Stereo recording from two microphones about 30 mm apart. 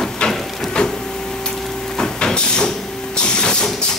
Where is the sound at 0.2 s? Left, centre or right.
Left.